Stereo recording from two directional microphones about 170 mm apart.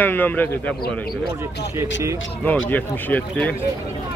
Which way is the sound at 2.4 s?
10° left (ahead or behind).